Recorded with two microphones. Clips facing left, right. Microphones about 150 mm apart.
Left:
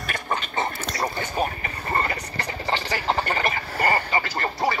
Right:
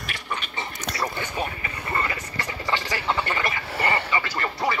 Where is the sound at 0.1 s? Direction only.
45° left (ahead or behind).